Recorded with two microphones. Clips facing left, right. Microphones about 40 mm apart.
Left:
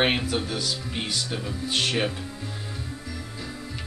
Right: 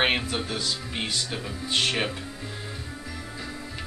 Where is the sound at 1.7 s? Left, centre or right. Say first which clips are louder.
Right 1 dB; right.